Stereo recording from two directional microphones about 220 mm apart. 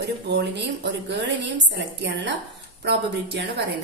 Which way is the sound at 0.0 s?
50° right (ahead or behind).